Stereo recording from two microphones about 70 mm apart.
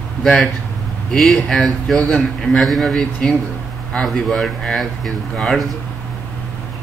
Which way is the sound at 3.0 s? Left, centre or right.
Centre.